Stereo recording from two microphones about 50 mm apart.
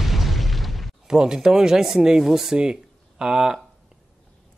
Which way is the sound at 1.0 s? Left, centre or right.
Centre.